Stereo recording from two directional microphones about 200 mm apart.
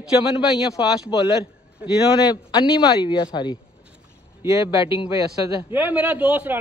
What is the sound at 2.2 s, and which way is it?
Speech, 20° left (ahead or behind).